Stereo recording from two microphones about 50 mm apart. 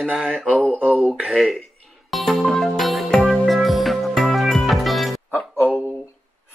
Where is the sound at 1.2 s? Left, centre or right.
Centre.